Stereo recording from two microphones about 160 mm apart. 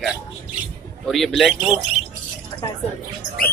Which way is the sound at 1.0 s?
Centre (ahead or behind).